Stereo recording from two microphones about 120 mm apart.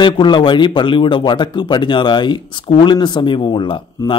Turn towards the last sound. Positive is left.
turn(degrees=40)  # may be behind; listen again after turning